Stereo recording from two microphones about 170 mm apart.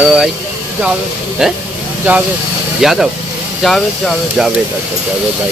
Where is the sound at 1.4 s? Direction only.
5° right (ahead or behind).